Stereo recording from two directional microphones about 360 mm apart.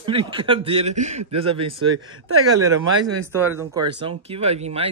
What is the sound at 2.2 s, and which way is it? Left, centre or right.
Speech, right.